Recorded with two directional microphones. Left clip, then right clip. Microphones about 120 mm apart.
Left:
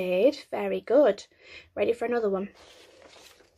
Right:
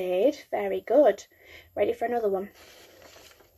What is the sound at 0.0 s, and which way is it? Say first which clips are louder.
Speech: left 1 dB; 30° left (ahead or behind).